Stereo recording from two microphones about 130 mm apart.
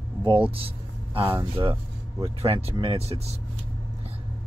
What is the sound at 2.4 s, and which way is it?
Speech, 50° right (ahead or behind).